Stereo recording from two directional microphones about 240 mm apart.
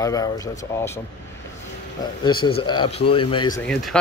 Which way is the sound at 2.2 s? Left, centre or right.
Centre.